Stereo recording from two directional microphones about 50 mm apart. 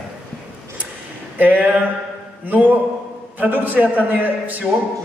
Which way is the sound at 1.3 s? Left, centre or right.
Right.